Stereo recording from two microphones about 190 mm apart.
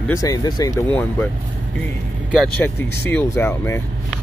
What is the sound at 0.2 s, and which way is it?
Speech, 20° left (ahead or behind).